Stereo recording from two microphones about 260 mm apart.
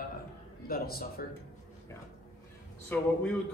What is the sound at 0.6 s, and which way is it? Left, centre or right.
Speech, left.